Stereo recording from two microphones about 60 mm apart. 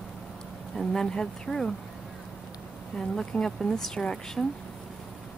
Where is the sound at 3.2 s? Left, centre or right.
Centre.